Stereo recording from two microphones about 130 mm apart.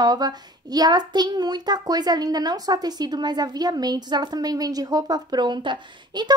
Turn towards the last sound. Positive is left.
turn(degrees=-35)  # may be behind; listen again after turning